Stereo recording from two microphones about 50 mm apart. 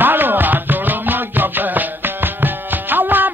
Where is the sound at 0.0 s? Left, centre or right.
Right.